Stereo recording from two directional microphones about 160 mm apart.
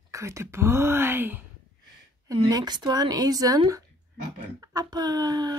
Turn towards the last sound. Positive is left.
turn(degrees=-25)  # may be behind; listen again after turning